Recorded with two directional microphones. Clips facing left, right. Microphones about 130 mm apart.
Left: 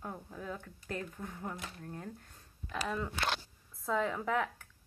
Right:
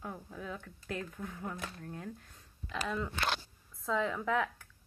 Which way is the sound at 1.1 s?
15° left (ahead or behind).